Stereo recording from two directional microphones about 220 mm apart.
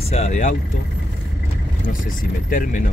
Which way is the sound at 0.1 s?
30° left (ahead or behind).